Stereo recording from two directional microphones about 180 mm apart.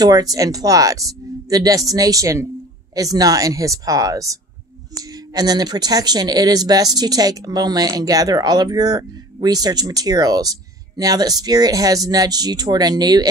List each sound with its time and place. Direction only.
0.0 s speech: 20° right (ahead or behind)